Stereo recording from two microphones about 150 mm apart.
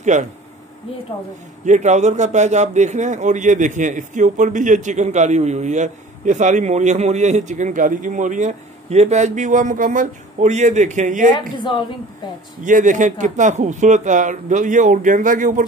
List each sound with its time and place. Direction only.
0.0 s speech: 55° right (ahead or behind)
1.7 s a man's voice: 50° right (ahead or behind)
11.3 s a woman's voice: 30° left (ahead or behind)
12.6 s speech: 60° right (ahead or behind)